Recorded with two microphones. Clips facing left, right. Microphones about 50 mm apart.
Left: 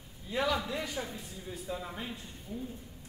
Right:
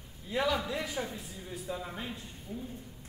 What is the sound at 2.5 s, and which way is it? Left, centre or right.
Speech, right.